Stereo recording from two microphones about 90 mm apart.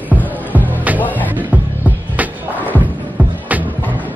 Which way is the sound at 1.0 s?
20° left (ahead or behind).